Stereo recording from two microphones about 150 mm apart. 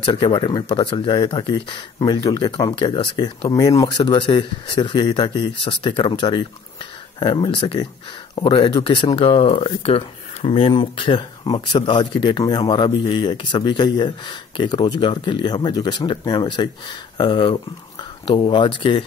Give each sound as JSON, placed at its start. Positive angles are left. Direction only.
{"t": 0.0, "sound": "speech", "side_deg": 30}